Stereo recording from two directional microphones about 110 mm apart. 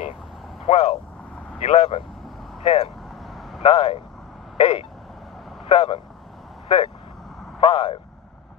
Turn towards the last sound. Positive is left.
turn(degrees=55)  # may be behind; listen again after turning